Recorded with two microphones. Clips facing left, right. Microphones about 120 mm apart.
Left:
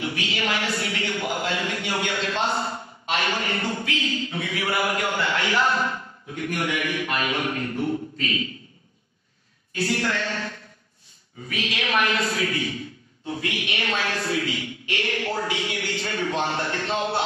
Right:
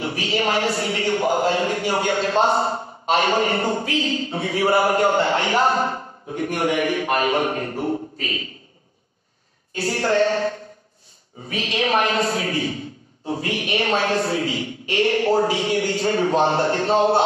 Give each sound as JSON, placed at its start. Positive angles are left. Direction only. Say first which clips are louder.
{"t": 0.0, "sound": "a man's voice", "louder": "right 5 dB", "side_deg": -35}
{"t": 9.8, "sound": "a man's voice", "louder": "right 6 dB", "side_deg": -35}